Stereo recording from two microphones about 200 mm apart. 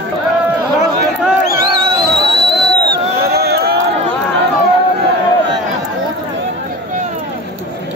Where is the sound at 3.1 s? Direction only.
50° right (ahead or behind).